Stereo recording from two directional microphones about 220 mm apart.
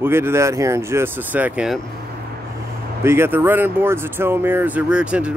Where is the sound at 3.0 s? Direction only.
10° right (ahead or behind).